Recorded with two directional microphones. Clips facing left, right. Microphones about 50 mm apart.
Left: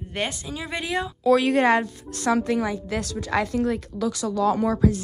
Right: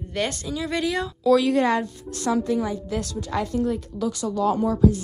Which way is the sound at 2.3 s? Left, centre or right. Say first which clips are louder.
Even; left.